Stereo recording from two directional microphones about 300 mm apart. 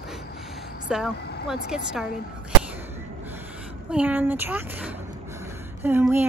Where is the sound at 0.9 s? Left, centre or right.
Centre.